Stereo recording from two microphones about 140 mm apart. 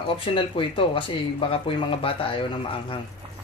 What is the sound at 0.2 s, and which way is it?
Speech, 40° left (ahead or behind).